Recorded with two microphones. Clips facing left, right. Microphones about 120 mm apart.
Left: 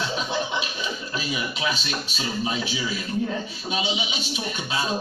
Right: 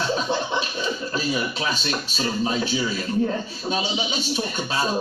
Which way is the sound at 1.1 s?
40° right (ahead or behind).